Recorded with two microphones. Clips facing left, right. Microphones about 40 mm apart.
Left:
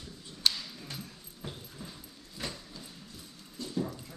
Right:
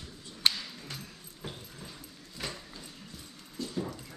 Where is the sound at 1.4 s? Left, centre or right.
Centre.